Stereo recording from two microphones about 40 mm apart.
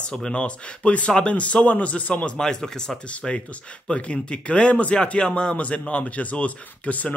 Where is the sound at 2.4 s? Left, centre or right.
Centre; by 7.1 s left.